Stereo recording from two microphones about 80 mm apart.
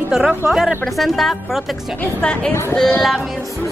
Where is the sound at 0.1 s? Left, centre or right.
Centre.